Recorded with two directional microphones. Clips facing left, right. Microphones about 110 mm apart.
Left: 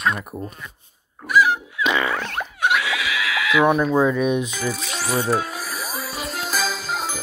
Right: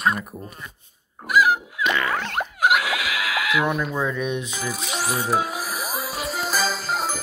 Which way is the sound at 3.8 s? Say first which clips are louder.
Left 7 dB; 35° left (ahead or behind).